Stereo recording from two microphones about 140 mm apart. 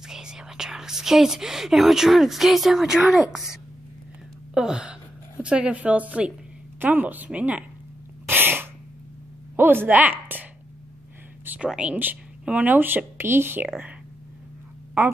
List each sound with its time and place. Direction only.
0.1 s speech: 5° right (ahead or behind)
4.6 s speech: 5° right (ahead or behind)
8.3 s sneeze: 15° right (ahead or behind)
9.6 s speech: 15° right (ahead or behind)
11.4 s speech: 10° right (ahead or behind)
15.0 s speech: 15° right (ahead or behind)